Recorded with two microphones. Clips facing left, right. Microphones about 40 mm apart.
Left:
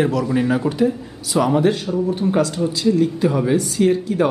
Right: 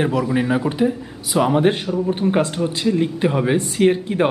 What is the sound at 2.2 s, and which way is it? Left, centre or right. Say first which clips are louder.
A man's voice: even; right.